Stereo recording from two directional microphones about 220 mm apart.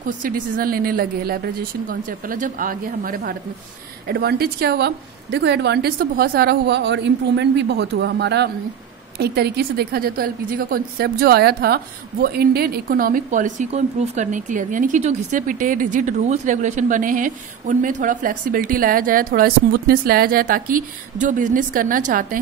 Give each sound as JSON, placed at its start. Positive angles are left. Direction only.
{"t": 0.0, "sound": "a woman's voice", "side_deg": -40}